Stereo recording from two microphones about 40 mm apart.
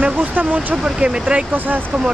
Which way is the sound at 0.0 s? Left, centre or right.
Right.